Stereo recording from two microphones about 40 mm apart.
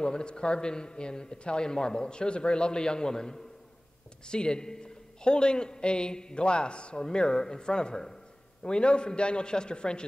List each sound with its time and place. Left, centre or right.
0.0 s a man's voice: left